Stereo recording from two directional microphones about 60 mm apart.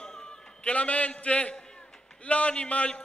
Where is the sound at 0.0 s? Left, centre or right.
Centre.